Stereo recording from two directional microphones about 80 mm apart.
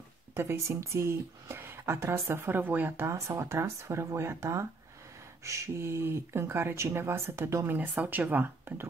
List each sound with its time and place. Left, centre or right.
0.4 s speech: right
3.1 s speech: right
7.7 s speech: right